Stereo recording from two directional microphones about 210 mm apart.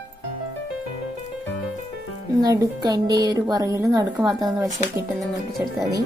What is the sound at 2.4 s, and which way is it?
Speech, 15° right (ahead or behind).